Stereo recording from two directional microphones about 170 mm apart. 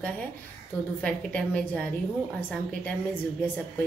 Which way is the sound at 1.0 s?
10° left (ahead or behind).